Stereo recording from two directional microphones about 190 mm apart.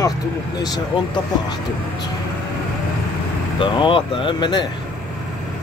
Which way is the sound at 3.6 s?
25° left (ahead or behind).